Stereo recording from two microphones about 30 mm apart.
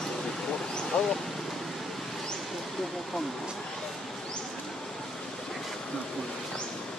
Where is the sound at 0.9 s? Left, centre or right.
Left.